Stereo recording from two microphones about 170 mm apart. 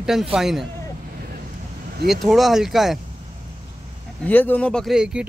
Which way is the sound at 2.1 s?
Centre (ahead or behind).